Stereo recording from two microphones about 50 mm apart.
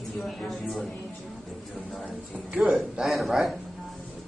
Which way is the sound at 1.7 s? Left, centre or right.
Centre.